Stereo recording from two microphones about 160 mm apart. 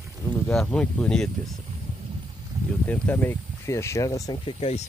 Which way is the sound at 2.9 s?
10° left (ahead or behind).